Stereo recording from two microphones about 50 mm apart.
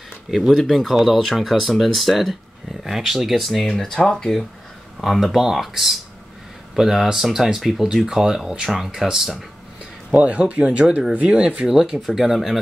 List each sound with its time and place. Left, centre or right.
0.5 s speech: centre
10.1 s speech: right; by 12.5 s centre